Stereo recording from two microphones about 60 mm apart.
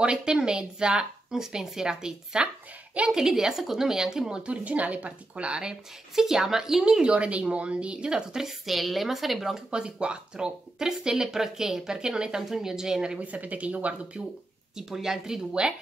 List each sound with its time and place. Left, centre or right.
0.0 s speech: centre
9.8 s speech: centre
13.2 s speech: right
14.8 s speech: centre